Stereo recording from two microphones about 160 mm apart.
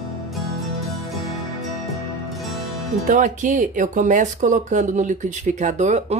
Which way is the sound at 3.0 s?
55° right (ahead or behind).